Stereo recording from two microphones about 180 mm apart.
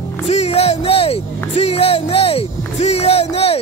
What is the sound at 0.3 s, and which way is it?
Music, 35° left (ahead or behind).